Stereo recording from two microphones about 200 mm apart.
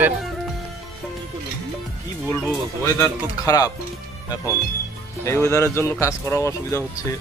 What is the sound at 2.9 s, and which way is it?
Speech, 15° left (ahead or behind).